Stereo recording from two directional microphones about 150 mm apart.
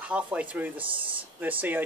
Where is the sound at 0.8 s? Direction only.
35° right (ahead or behind).